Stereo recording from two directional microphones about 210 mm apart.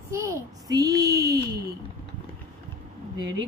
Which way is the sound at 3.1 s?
20° right (ahead or behind).